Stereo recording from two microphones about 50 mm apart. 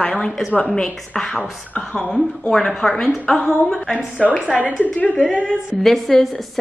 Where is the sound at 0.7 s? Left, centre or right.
Centre.